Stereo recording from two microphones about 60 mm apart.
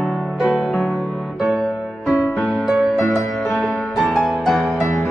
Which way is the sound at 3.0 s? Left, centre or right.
Centre.